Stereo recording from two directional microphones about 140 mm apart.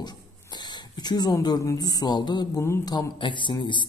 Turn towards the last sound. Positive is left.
turn(degrees=35)  # may be behind; listen again after turning